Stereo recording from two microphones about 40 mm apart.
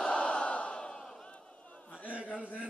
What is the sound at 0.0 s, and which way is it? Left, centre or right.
Crowd, left.